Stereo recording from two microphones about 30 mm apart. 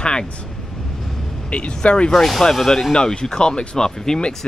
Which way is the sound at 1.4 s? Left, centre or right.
Left.